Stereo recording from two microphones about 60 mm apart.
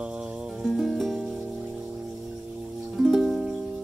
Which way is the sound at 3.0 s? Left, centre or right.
Centre.